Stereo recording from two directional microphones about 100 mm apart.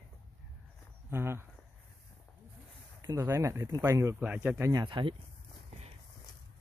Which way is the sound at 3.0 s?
30° right (ahead or behind).